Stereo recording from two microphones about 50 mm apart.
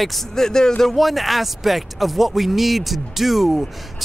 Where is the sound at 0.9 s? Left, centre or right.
Centre.